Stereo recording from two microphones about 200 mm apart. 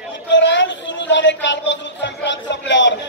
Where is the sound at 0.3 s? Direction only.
65° left (ahead or behind).